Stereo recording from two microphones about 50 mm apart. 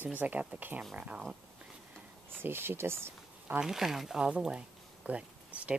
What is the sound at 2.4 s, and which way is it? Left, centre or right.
Speech, right.